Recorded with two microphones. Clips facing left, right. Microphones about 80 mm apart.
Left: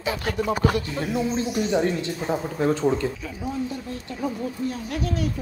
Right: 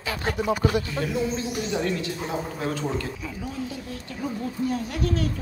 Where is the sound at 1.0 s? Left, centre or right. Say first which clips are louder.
Even; right.